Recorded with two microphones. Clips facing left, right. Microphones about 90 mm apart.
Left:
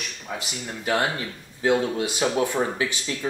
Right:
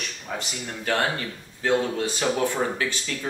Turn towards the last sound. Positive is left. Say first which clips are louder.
# left 1 dB
turn(degrees=15)  # may be behind; listen again after turning